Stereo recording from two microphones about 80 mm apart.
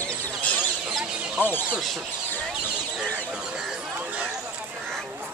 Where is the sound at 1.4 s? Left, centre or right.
Left.